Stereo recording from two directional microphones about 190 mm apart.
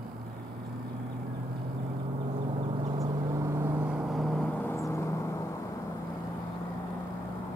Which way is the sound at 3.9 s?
5° right (ahead or behind).